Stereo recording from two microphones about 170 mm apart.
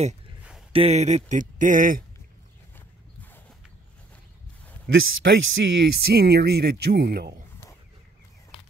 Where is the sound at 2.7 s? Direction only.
10° left (ahead or behind).